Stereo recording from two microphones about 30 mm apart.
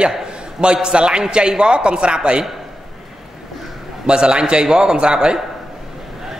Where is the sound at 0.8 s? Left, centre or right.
Right.